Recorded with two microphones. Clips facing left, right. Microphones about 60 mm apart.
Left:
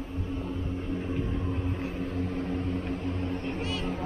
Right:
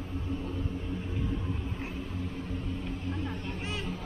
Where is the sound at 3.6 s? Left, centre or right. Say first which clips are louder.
Left 4 dB; right.